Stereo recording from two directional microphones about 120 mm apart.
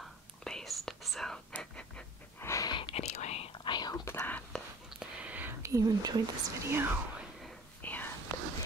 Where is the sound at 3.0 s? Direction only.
65° left (ahead or behind); by 4.0 s 35° left (ahead or behind).